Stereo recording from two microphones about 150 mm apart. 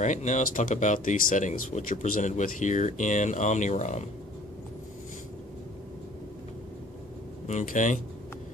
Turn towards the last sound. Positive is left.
turn(degrees=60)  # may be behind; listen again after turning